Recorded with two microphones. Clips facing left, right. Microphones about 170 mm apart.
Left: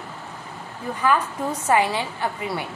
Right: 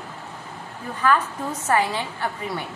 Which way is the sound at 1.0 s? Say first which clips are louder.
Even; 15° left (ahead or behind).